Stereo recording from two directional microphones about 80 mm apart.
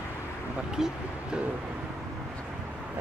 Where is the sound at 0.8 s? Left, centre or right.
Centre.